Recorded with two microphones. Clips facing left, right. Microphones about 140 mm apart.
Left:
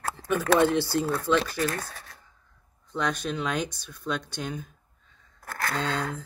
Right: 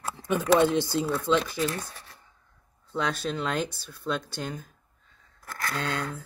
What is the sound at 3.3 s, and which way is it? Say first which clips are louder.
Speech: even; 15° left (ahead or behind).